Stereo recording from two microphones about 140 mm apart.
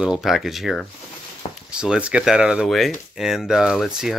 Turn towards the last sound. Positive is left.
turn(degrees=-5)  # may be behind; listen again after turning